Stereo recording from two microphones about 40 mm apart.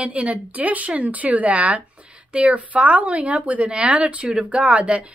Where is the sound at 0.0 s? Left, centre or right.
Right.